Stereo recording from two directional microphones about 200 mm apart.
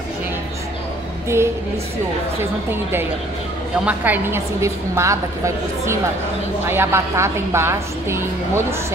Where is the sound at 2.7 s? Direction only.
10° right (ahead or behind).